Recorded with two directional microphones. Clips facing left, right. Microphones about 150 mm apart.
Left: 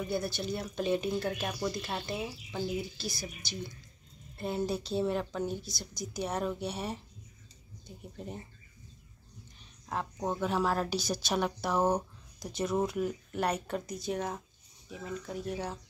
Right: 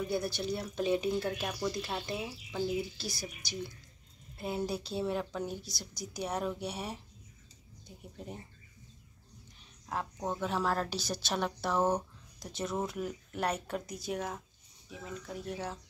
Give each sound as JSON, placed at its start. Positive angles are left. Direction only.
{"t": 0.4, "sound": "speech", "side_deg": 0}
{"t": 8.2, "sound": "speech", "side_deg": -5}
{"t": 9.8, "sound": "a woman's voice", "side_deg": 0}
{"t": 12.4, "sound": "speech", "side_deg": 0}